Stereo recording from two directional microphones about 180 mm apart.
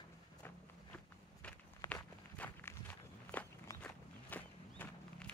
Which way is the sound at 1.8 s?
15° left (ahead or behind).